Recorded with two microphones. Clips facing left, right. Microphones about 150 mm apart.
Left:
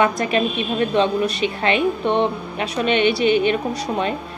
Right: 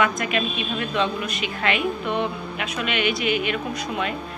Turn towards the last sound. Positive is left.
turn(degrees=30)  # may be behind; listen again after turning